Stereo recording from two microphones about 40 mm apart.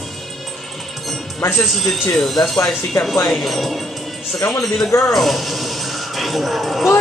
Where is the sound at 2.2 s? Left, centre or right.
Centre.